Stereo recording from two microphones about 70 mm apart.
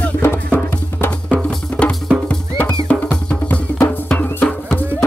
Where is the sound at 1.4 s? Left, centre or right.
Centre.